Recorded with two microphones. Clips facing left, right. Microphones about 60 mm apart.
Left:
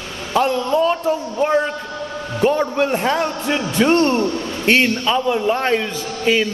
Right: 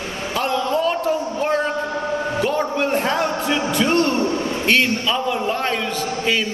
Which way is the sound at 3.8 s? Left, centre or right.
Left.